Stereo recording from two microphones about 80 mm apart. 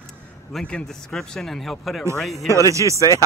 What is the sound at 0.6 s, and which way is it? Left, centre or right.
Speech, centre.